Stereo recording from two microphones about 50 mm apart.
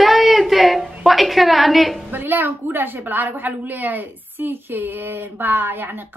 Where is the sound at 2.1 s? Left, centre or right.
Right.